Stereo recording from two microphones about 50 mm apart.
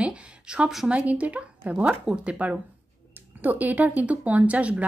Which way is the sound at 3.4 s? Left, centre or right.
Right.